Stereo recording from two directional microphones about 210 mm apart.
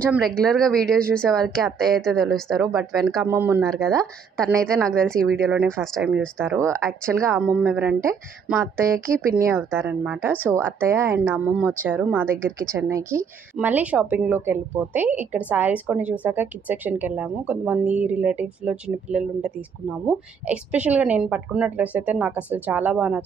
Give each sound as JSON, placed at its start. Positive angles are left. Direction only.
{"t": 0.1, "sound": "speech", "side_deg": 5}
{"t": 3.3, "sound": "a woman's voice", "side_deg": -10}
{"t": 4.7, "sound": "speech", "side_deg": 5}
{"t": 6.4, "sound": "a woman's voice", "side_deg": -10}
{"t": 6.7, "sound": "speech", "side_deg": 5}
{"t": 7.2, "sound": "a woman's voice", "side_deg": -10}